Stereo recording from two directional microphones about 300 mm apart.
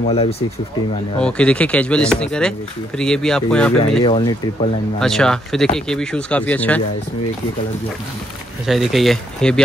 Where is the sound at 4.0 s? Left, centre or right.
Centre.